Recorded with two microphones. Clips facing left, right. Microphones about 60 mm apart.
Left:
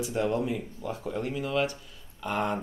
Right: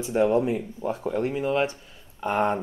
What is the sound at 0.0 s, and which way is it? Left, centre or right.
Speech, right.